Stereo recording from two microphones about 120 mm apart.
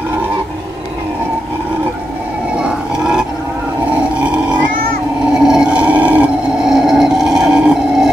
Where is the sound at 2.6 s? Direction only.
5° right (ahead or behind).